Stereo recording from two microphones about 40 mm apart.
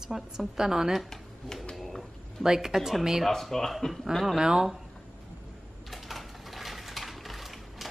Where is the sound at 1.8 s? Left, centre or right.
Centre.